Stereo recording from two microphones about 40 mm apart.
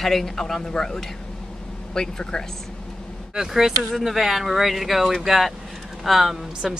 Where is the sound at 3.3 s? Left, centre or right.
Centre.